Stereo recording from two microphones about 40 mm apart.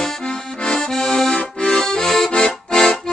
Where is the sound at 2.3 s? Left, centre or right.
Left.